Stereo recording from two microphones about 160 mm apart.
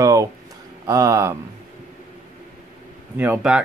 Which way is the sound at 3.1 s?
10° right (ahead or behind).